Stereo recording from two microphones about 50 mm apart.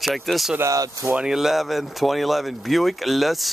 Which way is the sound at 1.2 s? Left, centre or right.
Centre.